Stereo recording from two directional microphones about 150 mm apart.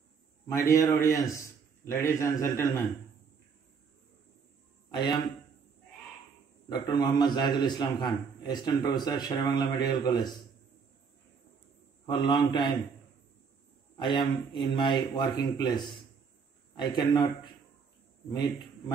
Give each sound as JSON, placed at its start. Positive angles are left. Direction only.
{"t": 0.5, "sound": "a man's voice", "side_deg": 20}
{"t": 4.9, "sound": "a man's voice", "side_deg": 30}
{"t": 6.7, "sound": "a man's voice", "side_deg": 25}
{"t": 12.1, "sound": "a man's voice", "side_deg": 30}
{"t": 13.9, "sound": "a man's voice", "side_deg": 30}